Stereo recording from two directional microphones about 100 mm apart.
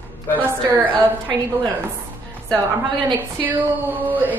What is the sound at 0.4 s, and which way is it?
Speech, 20° right (ahead or behind).